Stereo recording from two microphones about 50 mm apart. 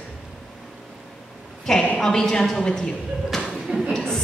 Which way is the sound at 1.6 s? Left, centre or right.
Centre.